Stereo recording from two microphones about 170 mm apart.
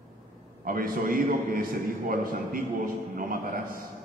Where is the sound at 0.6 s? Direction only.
55° right (ahead or behind).